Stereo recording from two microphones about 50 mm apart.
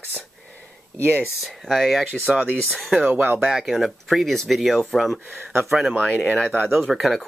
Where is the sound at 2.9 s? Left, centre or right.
Right.